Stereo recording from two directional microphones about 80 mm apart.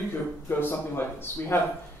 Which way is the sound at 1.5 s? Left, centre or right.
Left.